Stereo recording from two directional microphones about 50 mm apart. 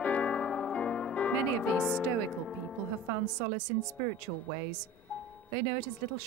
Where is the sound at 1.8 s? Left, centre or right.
Centre.